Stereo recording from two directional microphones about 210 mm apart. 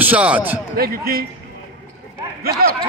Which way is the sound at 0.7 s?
45° right (ahead or behind).